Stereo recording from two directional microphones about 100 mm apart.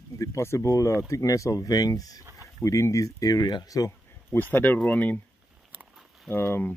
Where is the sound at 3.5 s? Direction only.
35° left (ahead or behind).